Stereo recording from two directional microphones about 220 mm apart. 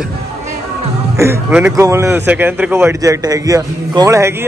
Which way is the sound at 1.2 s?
10° right (ahead or behind).